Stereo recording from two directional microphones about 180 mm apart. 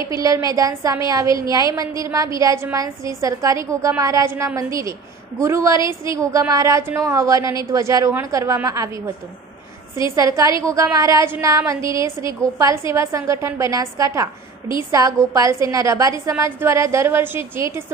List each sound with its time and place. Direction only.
0.1 s a woman's voice: 20° right (ahead or behind)
10.1 s a woman's voice: 15° right (ahead or behind)